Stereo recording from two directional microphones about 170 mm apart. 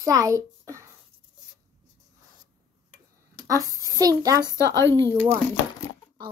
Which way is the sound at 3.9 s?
20° right (ahead or behind).